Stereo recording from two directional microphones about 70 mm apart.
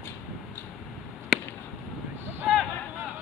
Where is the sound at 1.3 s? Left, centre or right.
Centre.